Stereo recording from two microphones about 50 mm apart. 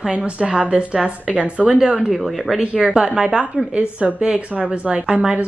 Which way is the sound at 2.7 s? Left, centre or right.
Centre.